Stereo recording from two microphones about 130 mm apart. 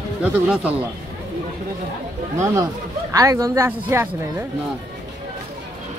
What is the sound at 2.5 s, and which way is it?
Speech, 25° right (ahead or behind).